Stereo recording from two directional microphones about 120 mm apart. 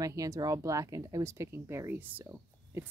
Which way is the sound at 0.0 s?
30° right (ahead or behind).